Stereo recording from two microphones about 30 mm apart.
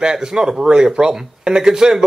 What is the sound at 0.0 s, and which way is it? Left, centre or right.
Speech, right.